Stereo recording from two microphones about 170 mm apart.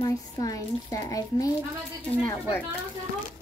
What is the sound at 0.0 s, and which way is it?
Speech, 20° left (ahead or behind).